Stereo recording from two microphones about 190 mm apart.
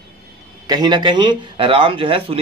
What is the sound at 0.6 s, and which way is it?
Speech, 20° right (ahead or behind).